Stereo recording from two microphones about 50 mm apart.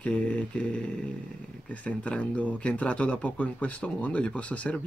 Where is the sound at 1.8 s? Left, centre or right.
Left.